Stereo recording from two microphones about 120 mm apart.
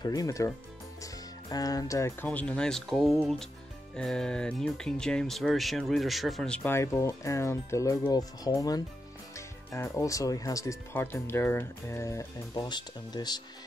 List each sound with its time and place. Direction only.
0.0 s speech: 30° left (ahead or behind)
2.2 s speech: 10° left (ahead or behind)
6.6 s speech: 20° left (ahead or behind)
12.5 s speech: 40° left (ahead or behind)